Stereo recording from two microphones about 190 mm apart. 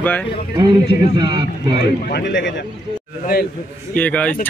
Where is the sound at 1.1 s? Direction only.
25° right (ahead or behind).